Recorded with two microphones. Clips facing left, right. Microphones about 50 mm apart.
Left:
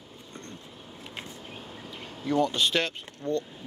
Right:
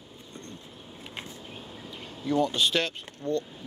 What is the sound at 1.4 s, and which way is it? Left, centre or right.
Speech, left.